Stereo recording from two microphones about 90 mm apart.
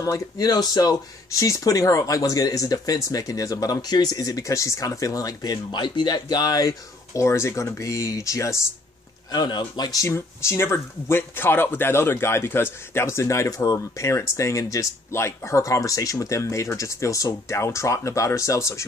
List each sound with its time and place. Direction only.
0.0 s speech: 40° left (ahead or behind)
9.3 s speech: 50° left (ahead or behind)
10.0 s speech: 30° left (ahead or behind)